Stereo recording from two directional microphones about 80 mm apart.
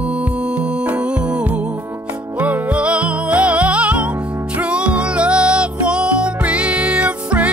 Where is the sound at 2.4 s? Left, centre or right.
Centre.